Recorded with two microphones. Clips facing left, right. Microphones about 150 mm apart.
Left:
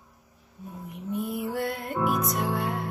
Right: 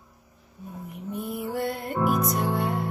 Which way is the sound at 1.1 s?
Centre (ahead or behind).